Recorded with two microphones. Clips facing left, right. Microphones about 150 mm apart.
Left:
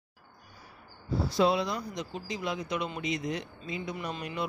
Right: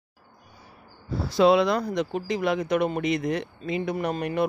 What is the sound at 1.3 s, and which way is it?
Speech, 80° right.